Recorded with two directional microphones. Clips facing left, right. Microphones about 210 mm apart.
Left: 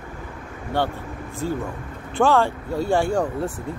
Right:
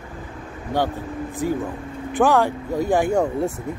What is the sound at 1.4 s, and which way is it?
Speech, 15° right (ahead or behind).